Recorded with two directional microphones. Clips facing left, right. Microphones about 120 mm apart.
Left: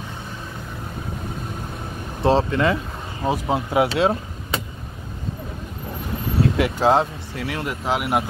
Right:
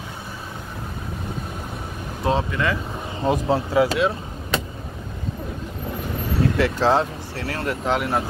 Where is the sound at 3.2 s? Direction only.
10° left (ahead or behind).